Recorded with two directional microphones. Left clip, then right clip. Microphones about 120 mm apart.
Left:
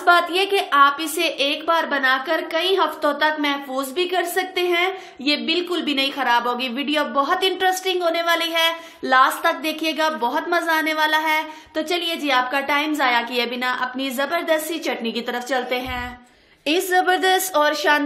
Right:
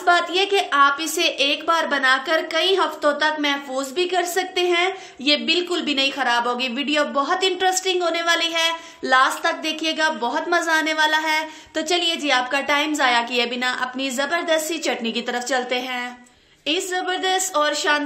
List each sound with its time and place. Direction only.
0.0 s a woman's voice: 10° left (ahead or behind)
16.6 s a woman's voice: 40° left (ahead or behind)